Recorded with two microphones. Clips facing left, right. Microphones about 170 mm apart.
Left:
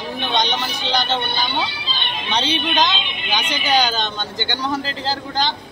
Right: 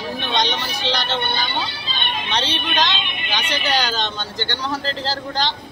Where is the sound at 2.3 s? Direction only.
Centre (ahead or behind).